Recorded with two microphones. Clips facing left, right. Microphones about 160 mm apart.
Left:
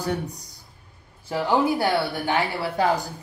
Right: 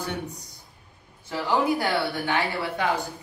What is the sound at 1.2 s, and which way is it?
Speech, 20° left (ahead or behind).